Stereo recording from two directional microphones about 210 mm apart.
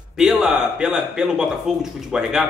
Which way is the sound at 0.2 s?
Centre (ahead or behind).